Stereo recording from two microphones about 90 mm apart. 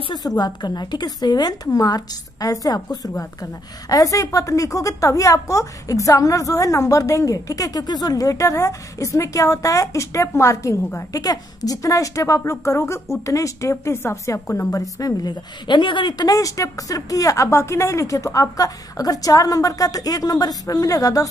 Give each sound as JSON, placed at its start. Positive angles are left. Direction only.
{"t": 0.1, "sound": "a woman's voice", "side_deg": 50}